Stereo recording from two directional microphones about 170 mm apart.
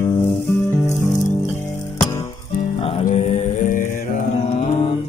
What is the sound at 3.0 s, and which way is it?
Mantra, 45° left (ahead or behind).